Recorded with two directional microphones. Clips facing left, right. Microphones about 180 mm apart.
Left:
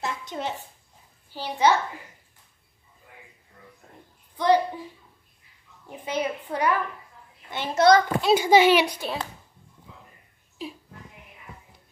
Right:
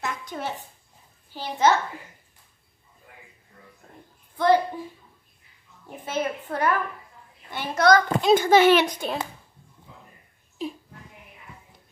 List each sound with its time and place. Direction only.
0.0 s a sound: 25° left (ahead or behind)
1.3 s speech: 15° left (ahead or behind)
4.4 s a child's voice: 15° left (ahead or behind)
5.9 s a child's voice: 15° left (ahead or behind)
8.2 s speech: 10° left (ahead or behind)